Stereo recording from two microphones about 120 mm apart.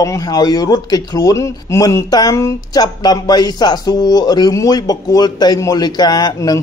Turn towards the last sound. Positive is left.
turn(degrees=35)  # may be behind; listen again after turning